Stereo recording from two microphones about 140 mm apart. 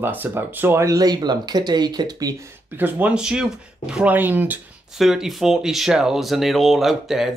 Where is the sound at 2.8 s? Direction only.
10° right (ahead or behind).